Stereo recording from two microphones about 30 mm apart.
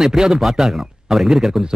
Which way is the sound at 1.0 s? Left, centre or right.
Centre.